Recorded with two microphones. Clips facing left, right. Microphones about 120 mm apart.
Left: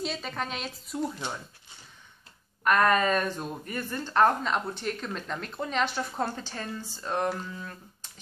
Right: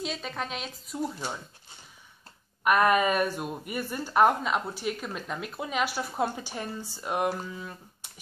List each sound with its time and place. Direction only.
0.0 s speech: centre (ahead or behind)
2.6 s speech: 10° right (ahead or behind)